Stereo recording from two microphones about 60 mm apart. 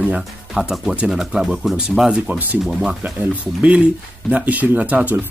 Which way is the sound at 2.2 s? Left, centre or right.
Right.